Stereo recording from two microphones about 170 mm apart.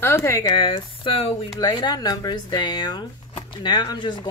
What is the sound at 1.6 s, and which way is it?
Speech, 25° left (ahead or behind).